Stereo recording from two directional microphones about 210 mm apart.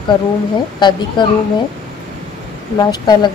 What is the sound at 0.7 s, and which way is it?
Speech, 20° left (ahead or behind).